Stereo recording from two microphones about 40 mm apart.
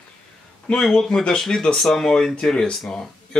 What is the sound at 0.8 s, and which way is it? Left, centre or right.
Speech, centre.